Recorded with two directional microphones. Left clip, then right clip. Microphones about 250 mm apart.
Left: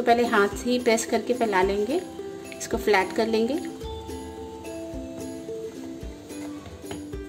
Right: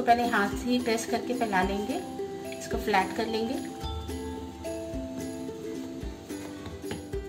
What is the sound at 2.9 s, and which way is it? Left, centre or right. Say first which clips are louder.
Speech: left 5 dB; left.